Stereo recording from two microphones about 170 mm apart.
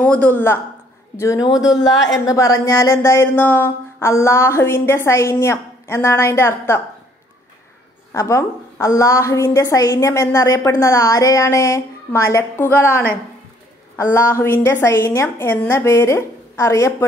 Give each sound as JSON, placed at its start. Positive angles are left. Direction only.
{"t": 0.0, "sound": "a woman's voice", "side_deg": 10}
{"t": 8.1, "sound": "a woman's voice", "side_deg": 15}